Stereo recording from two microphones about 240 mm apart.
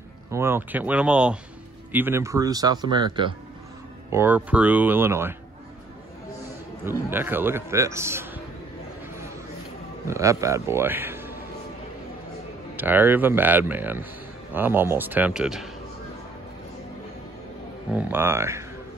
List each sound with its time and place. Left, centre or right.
0.3 s a man's voice: centre
4.1 s a man's voice: centre
6.8 s a man's voice: centre
10.0 s a man's voice: centre
12.7 s a man's voice: centre
17.9 s a man's voice: centre